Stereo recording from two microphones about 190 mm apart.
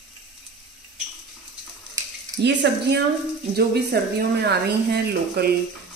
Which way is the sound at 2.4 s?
65° right (ahead or behind).